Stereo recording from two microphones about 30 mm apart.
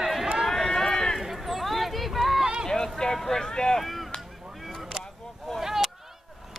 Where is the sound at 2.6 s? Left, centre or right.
Centre.